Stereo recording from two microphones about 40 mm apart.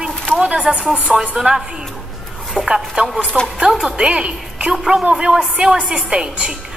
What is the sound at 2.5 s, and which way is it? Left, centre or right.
Speech, centre.